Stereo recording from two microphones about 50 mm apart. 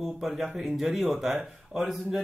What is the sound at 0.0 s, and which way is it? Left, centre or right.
Speech, centre.